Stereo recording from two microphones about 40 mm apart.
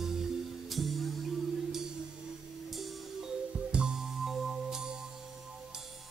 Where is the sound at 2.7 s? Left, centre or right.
Centre.